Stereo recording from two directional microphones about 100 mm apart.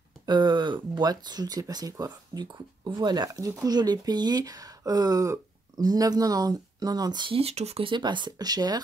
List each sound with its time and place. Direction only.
0.3 s speech: 50° right (ahead or behind)
7.3 s speech: 90° right
7.9 s speech: 50° right (ahead or behind)